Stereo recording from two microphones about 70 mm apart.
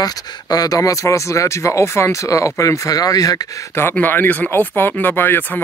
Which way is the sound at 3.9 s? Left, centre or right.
Left.